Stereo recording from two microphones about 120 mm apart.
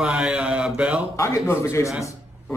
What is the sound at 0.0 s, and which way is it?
Mantra, 10° right (ahead or behind).